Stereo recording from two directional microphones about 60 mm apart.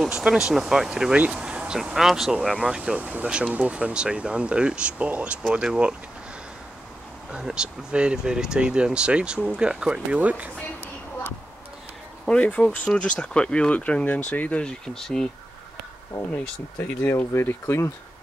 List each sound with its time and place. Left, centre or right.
0.0 s speech: centre
2.0 s speech: centre
2.5 s speech: centre
3.0 s speech: right
7.2 s speech: centre
12.3 s speech: centre; by 14.6 s left
14.6 s speech: centre
16.3 s speech: left
17.3 s speech: left